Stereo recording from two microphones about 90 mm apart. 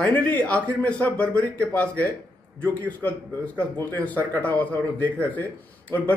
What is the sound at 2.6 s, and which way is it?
A man's voice, 20° left (ahead or behind).